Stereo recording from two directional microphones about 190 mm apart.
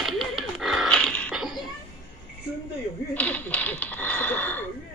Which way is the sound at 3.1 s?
10° left (ahead or behind).